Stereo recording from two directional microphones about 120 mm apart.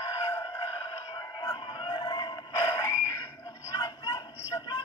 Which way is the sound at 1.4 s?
45° left (ahead or behind).